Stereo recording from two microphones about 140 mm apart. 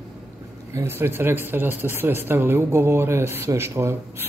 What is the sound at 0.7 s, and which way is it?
Speech, 15° right (ahead or behind).